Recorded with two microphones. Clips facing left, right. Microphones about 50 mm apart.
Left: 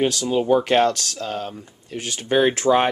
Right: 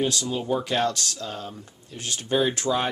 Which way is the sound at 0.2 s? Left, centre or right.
Left.